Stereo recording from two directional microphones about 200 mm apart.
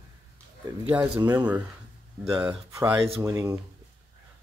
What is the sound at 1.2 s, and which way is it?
Speech, 20° right (ahead or behind).